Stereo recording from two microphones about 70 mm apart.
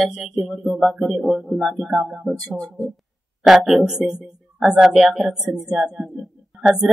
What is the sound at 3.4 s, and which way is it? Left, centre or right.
Speech, centre.